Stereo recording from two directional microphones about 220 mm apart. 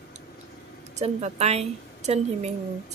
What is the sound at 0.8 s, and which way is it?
A woman's voice, 30° right (ahead or behind).